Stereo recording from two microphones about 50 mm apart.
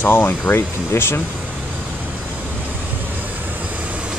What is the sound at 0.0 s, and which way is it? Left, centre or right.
Speech, left.